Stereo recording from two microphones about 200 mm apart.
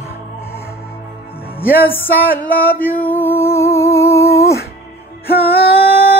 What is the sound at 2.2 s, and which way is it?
Music, 45° left (ahead or behind).